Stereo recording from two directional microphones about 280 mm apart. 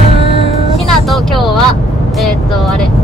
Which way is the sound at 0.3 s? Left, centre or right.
Right.